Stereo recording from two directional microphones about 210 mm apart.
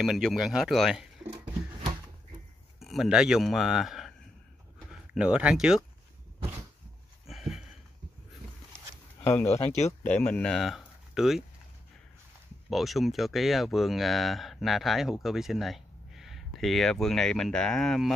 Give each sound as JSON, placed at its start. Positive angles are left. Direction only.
{"t": 0.0, "sound": "speech", "side_deg": 0}
{"t": 1.3, "sound": "a sound", "side_deg": -25}
{"t": 2.8, "sound": "speech", "side_deg": 0}
{"t": 5.1, "sound": "speech", "side_deg": -5}
{"t": 7.2, "sound": "a sound", "side_deg": 0}
{"t": 8.7, "sound": "a sound", "side_deg": 10}
{"t": 9.5, "sound": "speech", "side_deg": 30}
{"t": 10.0, "sound": "speech", "side_deg": 5}
{"t": 12.6, "sound": "speech", "side_deg": 0}